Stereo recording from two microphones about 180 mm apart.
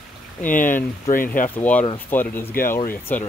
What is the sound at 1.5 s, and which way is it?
Speech, 10° left (ahead or behind).